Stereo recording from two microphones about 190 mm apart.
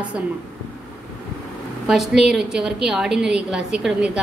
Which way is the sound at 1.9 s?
5° right (ahead or behind).